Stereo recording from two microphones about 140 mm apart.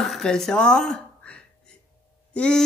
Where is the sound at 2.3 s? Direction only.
5° left (ahead or behind).